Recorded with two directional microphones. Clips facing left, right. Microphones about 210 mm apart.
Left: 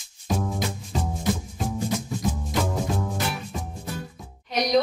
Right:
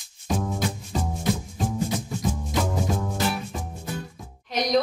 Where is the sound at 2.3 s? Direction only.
5° left (ahead or behind).